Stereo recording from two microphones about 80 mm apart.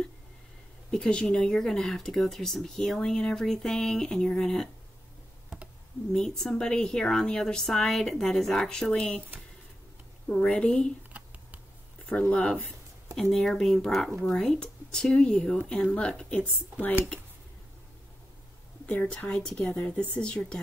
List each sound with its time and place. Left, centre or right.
0.9 s speech: centre
6.1 s a woman's voice: centre
10.2 s a woman's voice: centre
11.1 s computer keyboard: centre
12.1 s a woman's voice: centre
18.9 s a woman's voice: centre